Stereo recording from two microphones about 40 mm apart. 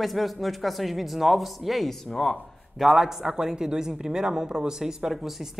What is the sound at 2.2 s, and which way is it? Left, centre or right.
Speech, centre.